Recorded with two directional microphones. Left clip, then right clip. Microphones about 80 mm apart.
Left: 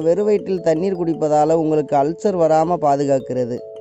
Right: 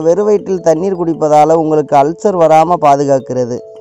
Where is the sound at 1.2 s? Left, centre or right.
Right.